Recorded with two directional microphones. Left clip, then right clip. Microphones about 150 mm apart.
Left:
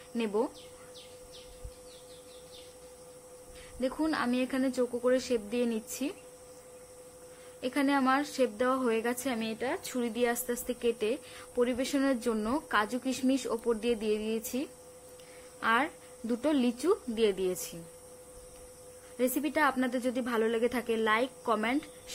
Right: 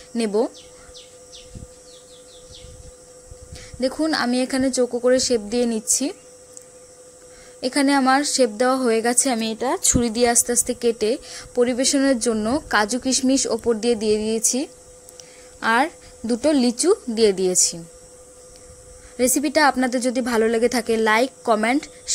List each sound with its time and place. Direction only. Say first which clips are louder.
0.1 s a woman's voice: right 10 dB; 35° right (ahead or behind)
3.8 s a woman's voice: right 10 dB; 40° right (ahead or behind)
7.6 s a woman's voice: right 10 dB; 45° right (ahead or behind)
9.4 s a woman's voice: right 11 dB; 65° right (ahead or behind)
10.3 s a woman's voice: right 12 dB; 40° right (ahead or behind)
19.1 s a woman's voice: right 11 dB; 45° right (ahead or behind)